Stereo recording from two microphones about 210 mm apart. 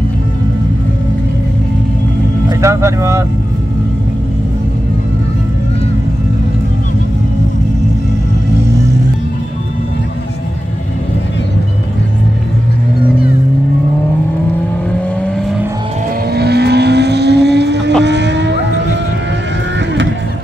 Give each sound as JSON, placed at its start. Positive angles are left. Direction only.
{"t": 2.6, "sound": "speech", "side_deg": -15}
{"t": 16.3, "sound": "vehicle", "side_deg": -50}
{"t": 18.0, "sound": "a sound", "side_deg": -55}